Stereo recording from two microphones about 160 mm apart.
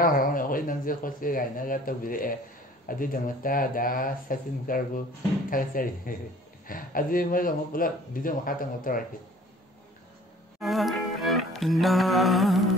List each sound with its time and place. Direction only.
0.0 s speech: 60° left (ahead or behind)
10.6 s music: centre (ahead or behind)